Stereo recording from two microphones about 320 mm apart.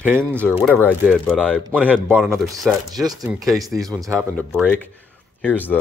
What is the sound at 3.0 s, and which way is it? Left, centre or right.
Speech, centre.